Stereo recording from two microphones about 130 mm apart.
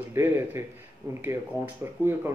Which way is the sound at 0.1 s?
20° right (ahead or behind).